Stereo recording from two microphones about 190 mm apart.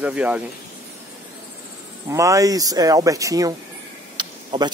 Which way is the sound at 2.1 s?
15° right (ahead or behind).